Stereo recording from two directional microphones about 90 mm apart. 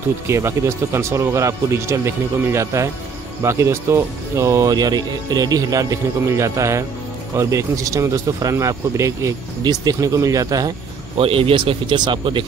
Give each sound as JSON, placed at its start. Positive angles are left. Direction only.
{"t": 0.3, "sound": "speech", "side_deg": -30}
{"t": 11.1, "sound": "speech", "side_deg": -90}